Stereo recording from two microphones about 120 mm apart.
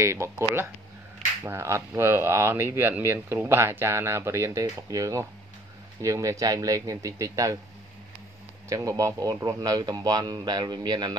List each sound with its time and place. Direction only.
0.0 s speech: 25° right (ahead or behind)
8.6 s a man's voice: 25° right (ahead or behind)